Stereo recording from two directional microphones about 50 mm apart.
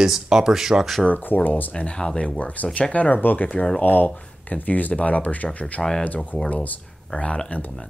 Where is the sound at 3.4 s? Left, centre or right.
Left.